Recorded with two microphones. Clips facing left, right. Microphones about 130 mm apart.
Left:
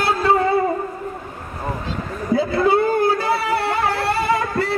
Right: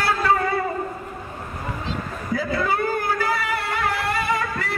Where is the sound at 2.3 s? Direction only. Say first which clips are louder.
Left 6 dB; 30° left (ahead or behind).